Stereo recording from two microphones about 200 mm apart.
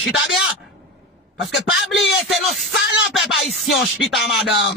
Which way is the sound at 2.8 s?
60° left (ahead or behind).